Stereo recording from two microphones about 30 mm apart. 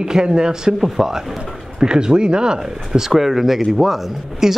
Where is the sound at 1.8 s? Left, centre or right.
Right.